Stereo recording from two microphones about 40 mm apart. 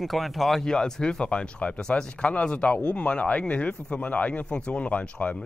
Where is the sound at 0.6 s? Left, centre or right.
Centre.